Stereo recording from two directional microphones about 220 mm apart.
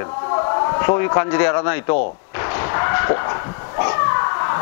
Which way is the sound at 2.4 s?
20° left (ahead or behind).